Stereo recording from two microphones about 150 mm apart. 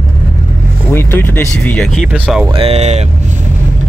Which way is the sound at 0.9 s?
15° left (ahead or behind).